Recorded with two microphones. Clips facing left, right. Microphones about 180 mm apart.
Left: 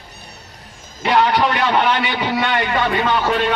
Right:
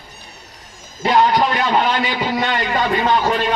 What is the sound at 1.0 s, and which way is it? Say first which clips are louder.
A man's voice: right 1 dB; 65° left (ahead or behind).